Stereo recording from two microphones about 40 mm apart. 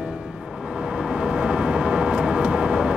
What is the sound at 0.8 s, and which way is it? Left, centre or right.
Vehicle, centre.